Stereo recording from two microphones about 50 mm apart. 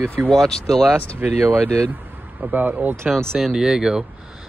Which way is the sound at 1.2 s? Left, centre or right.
Right.